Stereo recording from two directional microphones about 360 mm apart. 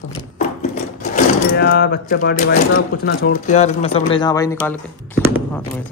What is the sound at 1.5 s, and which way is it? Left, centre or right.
Speech, left.